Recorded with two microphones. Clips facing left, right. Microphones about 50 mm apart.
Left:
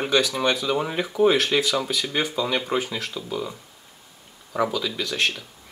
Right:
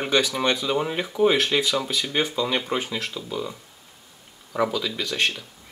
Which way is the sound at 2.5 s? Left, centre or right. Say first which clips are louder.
Left 1 dB; centre.